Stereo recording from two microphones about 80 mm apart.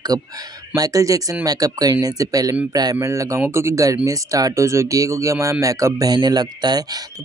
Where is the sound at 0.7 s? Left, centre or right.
Right.